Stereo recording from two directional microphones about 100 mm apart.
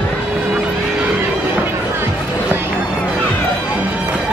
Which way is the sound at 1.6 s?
20° right (ahead or behind).